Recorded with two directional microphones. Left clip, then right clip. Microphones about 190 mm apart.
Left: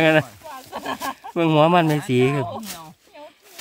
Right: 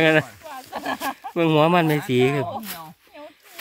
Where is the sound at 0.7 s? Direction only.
20° left (ahead or behind).